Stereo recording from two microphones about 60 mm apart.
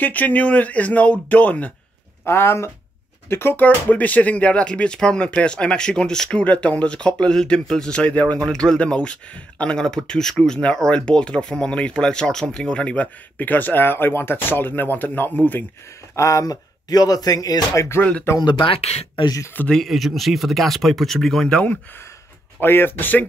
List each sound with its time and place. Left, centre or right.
0.0 s speech: left
2.2 s speech: left
8.5 s speech: centre; by 15.6 s left
16.2 s speech: left
18.3 s speech: left
19.9 s speech: centre
21.5 s speech: left
22.6 s speech: left